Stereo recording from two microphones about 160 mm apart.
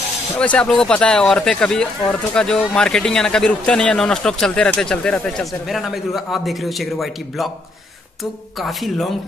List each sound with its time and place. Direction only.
0.4 s speech: 5° left (ahead or behind)
8.5 s speech: centre (ahead or behind)